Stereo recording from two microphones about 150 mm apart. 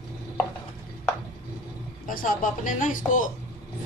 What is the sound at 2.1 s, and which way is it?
Speech, 65° left (ahead or behind).